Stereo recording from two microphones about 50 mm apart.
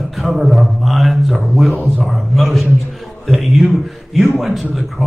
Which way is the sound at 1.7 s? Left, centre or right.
Right.